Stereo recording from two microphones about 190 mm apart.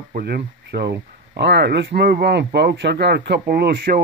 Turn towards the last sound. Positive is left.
turn(degrees=-55)  # may be behind; listen again after turning